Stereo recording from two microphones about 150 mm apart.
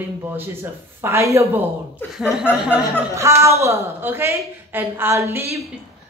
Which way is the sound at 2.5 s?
5° right (ahead or behind).